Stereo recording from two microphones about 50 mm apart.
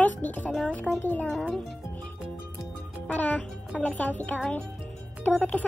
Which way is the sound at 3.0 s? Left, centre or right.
Left.